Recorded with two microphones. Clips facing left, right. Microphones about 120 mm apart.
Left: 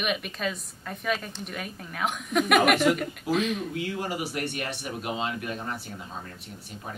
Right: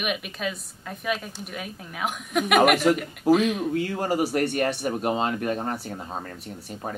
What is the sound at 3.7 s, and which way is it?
Speech, 40° right (ahead or behind).